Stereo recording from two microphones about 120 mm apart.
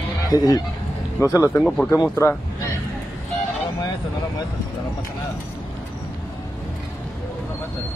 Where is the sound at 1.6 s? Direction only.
5° left (ahead or behind).